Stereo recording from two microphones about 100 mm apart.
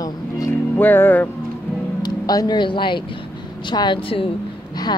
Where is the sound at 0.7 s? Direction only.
20° left (ahead or behind).